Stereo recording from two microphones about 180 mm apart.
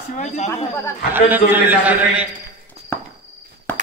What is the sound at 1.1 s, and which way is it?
A man's voice, 10° right (ahead or behind).